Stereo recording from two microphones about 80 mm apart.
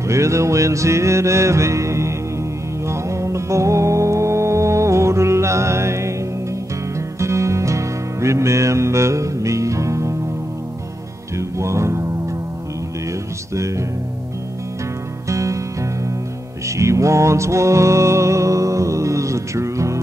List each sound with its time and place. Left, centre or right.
0.1 s music: right
7.2 s music: right
11.3 s music: right
13.6 s music: right
15.2 s music: right